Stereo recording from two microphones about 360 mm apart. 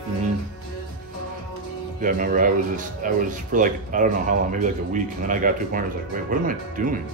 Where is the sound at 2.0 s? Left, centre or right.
Right.